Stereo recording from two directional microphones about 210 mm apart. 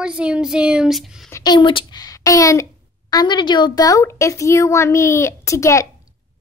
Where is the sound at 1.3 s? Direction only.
20° left (ahead or behind).